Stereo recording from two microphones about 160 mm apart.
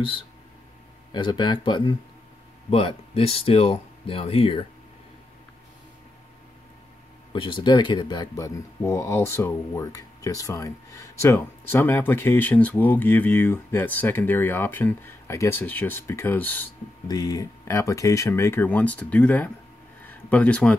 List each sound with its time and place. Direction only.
1.1 s speech: 30° left (ahead or behind)
7.3 s speech: 30° left (ahead or behind); by 16.6 s 10° left (ahead or behind)
17.1 s speech: 25° left (ahead or behind); by 20.7 s 10° left (ahead or behind)